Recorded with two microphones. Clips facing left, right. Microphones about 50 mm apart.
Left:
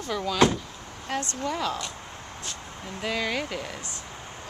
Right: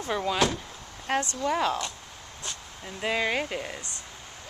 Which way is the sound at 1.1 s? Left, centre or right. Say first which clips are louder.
Right 3 dB; right.